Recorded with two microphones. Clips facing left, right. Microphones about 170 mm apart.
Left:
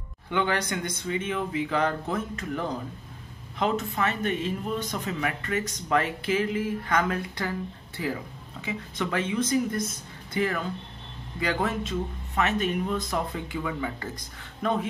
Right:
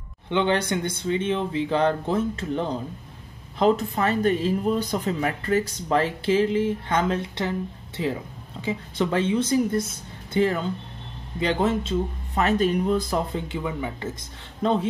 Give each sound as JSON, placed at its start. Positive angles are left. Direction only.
{"t": 0.3, "sound": "speech", "side_deg": -25}